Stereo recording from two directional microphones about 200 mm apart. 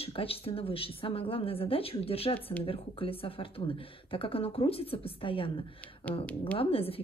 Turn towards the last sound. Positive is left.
turn(degrees=30)  # may be behind; listen again after turning